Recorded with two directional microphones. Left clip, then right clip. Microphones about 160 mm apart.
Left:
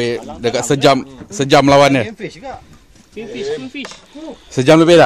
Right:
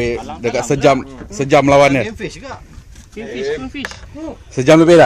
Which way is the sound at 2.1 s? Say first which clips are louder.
Right 1 dB; 55° right (ahead or behind).